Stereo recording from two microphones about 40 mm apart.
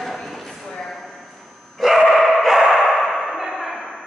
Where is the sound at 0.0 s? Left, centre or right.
Centre.